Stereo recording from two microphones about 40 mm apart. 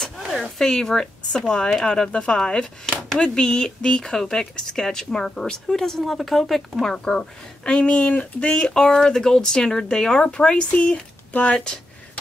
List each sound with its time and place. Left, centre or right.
0.6 s speech: centre
10.8 s speech: left
11.5 s speech: left